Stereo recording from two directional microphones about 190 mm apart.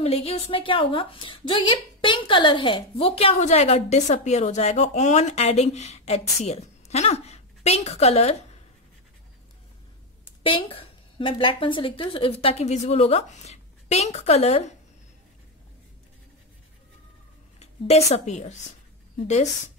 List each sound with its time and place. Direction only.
0.0 s a woman's voice: 30° left (ahead or behind)
10.4 s a woman's voice: 30° left (ahead or behind)
17.6 s a woman's voice: 35° left (ahead or behind)